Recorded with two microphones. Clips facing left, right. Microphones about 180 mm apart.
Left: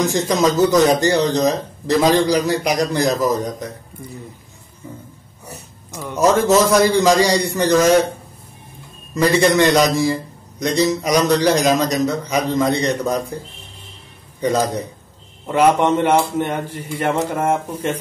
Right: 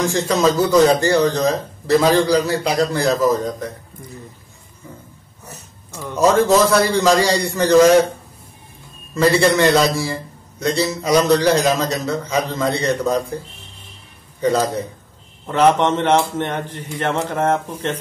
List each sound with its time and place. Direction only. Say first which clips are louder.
0.1 s a man's voice: even; 15° left (ahead or behind)
5.5 s a sound: left 3 dB; 10° left (ahead or behind)
6.1 s a man's voice: even; 15° right (ahead or behind)
6.6 s a man's voice: left 1 dB; 15° left (ahead or behind)
9.1 s a man's voice: even; 15° left (ahead or behind)
14.4 s a man's voice: right 1 dB; 15° left (ahead or behind)